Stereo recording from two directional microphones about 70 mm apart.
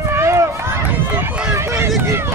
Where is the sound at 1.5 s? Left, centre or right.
Right.